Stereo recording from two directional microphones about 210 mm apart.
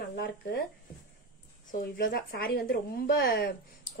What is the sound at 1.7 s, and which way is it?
Speech, 45° left (ahead or behind).